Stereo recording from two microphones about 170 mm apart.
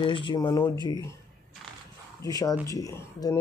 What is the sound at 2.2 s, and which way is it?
Speech, 20° left (ahead or behind).